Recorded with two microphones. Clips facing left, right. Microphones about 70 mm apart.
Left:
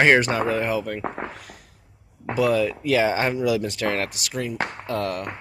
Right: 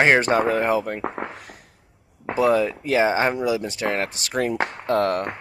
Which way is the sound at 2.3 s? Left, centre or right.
Right.